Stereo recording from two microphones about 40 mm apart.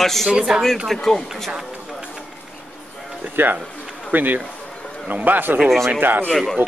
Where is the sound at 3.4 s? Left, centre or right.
Right.